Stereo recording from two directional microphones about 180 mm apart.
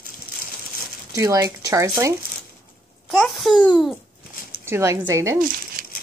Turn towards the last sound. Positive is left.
turn(degrees=-50)  # may be behind; listen again after turning